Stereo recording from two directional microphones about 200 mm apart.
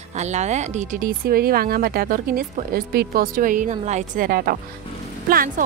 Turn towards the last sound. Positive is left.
turn(degrees=-45)  # may be behind; listen again after turning